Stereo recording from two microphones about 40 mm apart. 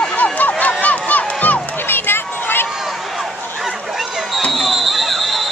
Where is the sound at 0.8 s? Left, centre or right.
Left.